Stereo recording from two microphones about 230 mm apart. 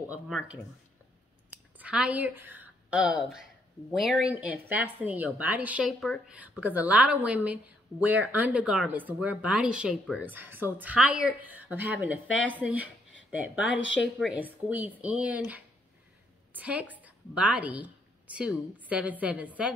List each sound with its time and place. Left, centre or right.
0.0 s speech: centre
1.8 s a woman's voice: centre
13.7 s speech: left
14.2 s a woman's voice: centre